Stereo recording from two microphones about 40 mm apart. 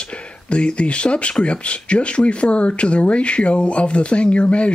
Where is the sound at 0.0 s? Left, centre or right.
Left.